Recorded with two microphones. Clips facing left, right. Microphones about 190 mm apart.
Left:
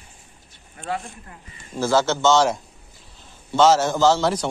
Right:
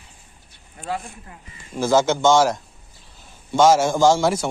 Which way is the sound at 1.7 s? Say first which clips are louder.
Right 2 dB; 15° right (ahead or behind).